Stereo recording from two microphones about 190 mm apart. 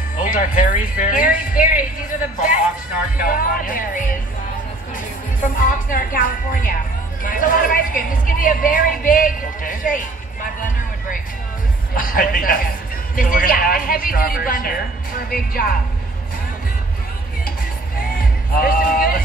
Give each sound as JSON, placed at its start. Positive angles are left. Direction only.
{"t": 0.2, "sound": "a man's voice", "side_deg": 45}
{"t": 5.4, "sound": "a man's voice", "side_deg": 45}
{"t": 11.9, "sound": "a man's voice", "side_deg": 50}
{"t": 17.9, "sound": "music", "side_deg": 50}